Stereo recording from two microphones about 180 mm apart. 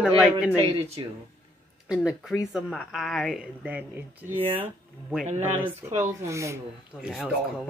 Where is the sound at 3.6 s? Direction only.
10° right (ahead or behind).